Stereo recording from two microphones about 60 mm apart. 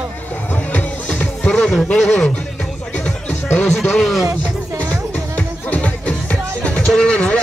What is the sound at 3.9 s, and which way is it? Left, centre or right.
Speech, centre.